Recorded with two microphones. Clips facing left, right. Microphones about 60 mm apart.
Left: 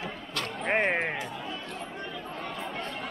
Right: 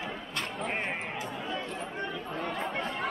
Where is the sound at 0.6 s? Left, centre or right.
Left.